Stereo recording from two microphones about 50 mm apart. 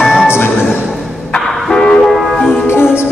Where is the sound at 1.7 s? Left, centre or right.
Centre.